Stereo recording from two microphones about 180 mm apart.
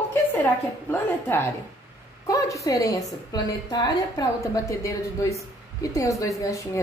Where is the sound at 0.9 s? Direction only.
10° left (ahead or behind).